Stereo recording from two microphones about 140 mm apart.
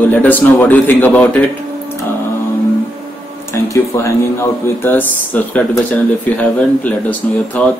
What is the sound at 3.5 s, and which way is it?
Speech, 20° left (ahead or behind).